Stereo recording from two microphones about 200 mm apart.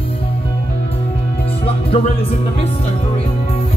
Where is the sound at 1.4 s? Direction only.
30° left (ahead or behind).